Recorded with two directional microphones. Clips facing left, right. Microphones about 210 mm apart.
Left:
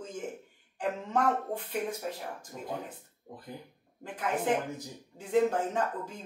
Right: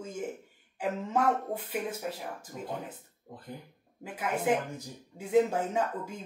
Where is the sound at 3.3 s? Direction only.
20° left (ahead or behind).